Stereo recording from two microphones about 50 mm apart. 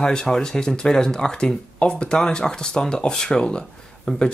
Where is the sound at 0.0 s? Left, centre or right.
Centre.